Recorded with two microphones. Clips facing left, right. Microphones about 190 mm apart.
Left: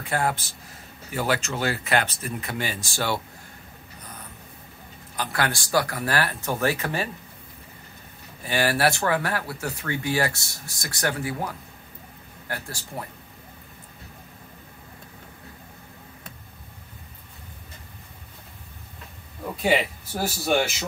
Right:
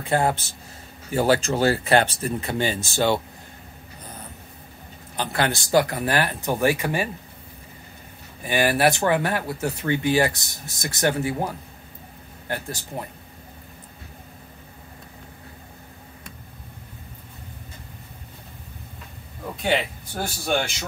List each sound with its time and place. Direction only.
0.0 s speech: 25° right (ahead or behind)
5.1 s speech: 25° right (ahead or behind)
8.4 s speech: 15° right (ahead or behind)
19.6 s speech: 5° left (ahead or behind)